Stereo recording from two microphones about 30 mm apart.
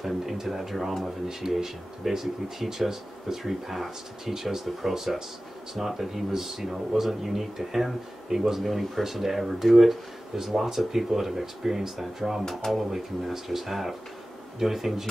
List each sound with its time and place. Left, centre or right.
0.0 s speech: centre